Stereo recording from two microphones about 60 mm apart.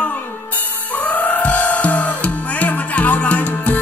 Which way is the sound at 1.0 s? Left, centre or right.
Left.